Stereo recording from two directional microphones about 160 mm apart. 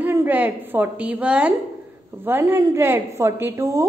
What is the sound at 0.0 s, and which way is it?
A woman's voice, 15° right (ahead or behind).